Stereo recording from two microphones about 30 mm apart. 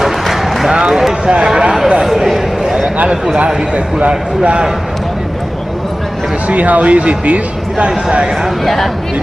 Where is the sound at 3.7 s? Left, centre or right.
Right.